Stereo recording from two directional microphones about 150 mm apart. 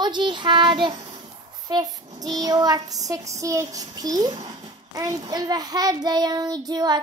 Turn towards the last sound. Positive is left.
turn(degrees=-30)  # may be behind; listen again after turning